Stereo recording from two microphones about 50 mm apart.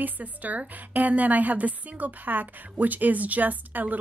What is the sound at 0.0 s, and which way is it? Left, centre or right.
A woman's voice, right.